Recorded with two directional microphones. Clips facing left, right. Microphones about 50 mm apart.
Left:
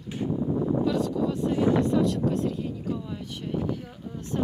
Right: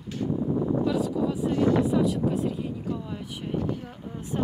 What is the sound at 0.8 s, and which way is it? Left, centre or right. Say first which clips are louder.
Speech: even; centre.